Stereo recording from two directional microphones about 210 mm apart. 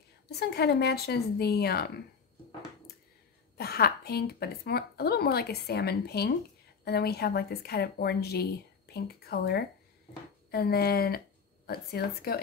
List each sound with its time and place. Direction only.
0.3 s a woman's voice: 50° left (ahead or behind)
3.5 s a woman's voice: 50° left (ahead or behind)